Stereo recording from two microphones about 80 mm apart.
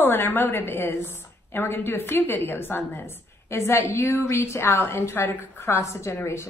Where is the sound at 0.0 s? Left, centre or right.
Left.